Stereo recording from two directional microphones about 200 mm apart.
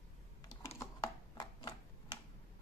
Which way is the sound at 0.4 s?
15° left (ahead or behind).